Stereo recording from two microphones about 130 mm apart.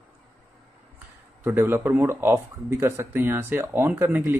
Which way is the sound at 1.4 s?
15° right (ahead or behind).